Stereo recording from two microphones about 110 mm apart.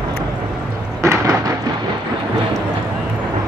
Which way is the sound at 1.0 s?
25° right (ahead or behind).